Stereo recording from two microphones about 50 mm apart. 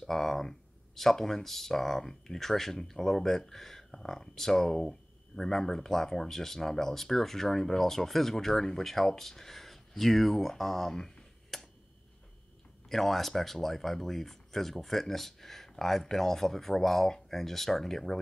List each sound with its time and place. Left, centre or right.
0.0 s speech: centre
12.8 s speech: centre